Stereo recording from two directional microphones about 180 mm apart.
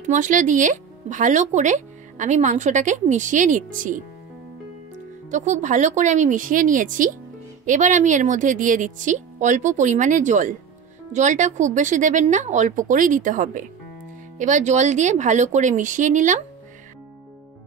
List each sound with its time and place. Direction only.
0.0 s speech: 45° right (ahead or behind)
5.3 s speech: 40° right (ahead or behind)